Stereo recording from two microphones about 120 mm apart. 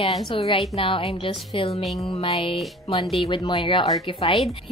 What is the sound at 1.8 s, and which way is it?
Speech, centre (ahead or behind).